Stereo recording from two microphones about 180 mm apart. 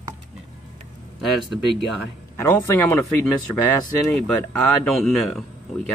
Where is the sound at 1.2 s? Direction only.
Centre (ahead or behind).